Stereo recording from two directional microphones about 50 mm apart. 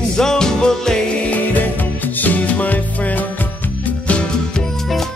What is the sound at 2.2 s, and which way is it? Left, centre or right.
Music, left.